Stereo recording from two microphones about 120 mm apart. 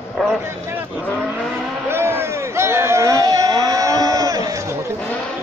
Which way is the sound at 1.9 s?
20° right (ahead or behind).